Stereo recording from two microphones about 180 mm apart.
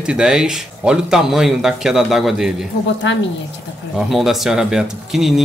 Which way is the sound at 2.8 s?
85° left.